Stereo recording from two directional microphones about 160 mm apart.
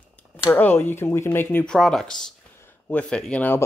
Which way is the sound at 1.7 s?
Centre (ahead or behind).